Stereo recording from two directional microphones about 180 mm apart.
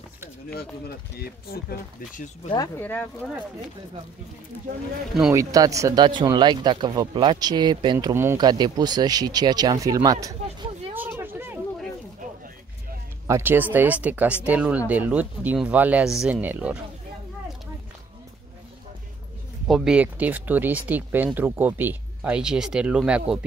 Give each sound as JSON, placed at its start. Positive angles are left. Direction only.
{"t": 0.5, "sound": "speech", "side_deg": 60}
{"t": 2.8, "sound": "speech", "side_deg": 10}
{"t": 5.3, "sound": "speech", "side_deg": -20}
{"t": 8.1, "sound": "speech", "side_deg": -15}
{"t": 8.4, "sound": "speech", "side_deg": -25}
{"t": 11.0, "sound": "a sound", "side_deg": -10}
{"t": 13.3, "sound": "speech", "side_deg": -10}
{"t": 19.7, "sound": "speech", "side_deg": -5}